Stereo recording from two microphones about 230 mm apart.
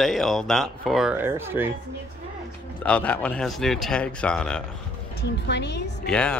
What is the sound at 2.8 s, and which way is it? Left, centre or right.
Speech, centre.